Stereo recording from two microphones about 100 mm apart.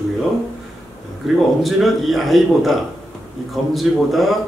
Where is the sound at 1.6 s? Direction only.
Centre (ahead or behind).